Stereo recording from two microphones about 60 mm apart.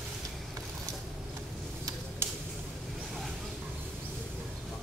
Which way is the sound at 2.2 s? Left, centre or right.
Right.